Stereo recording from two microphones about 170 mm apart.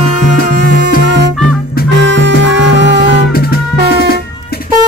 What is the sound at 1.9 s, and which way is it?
Music, 90° right.